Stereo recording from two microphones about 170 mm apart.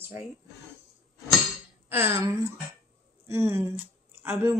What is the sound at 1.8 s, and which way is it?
Speech, 15° right (ahead or behind).